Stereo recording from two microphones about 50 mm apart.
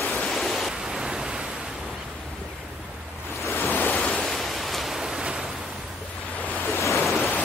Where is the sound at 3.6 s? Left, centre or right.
Left.